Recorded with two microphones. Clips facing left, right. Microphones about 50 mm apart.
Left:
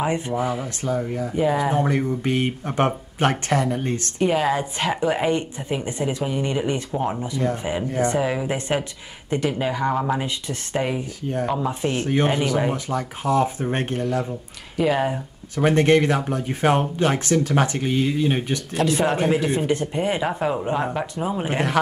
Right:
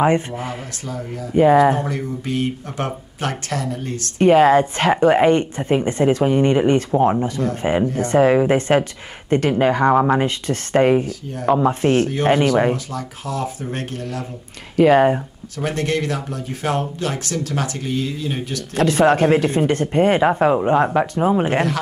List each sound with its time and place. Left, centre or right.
0.8 s speech: left
1.3 s speech: right
1.8 s speech: left
4.2 s speech: right
12.7 s speech: left
14.8 s speech: right
15.5 s speech: left
18.8 s speech: right
20.2 s speech: right